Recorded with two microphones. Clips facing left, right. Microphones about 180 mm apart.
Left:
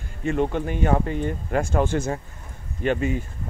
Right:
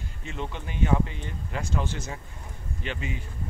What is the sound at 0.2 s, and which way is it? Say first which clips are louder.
Speech: left 13 dB; 55° left (ahead or behind).